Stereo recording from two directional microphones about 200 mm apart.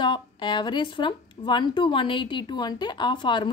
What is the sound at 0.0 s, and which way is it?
Speech, 25° left (ahead or behind).